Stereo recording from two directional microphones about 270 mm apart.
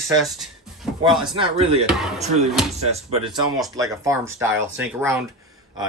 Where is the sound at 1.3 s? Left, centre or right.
Centre.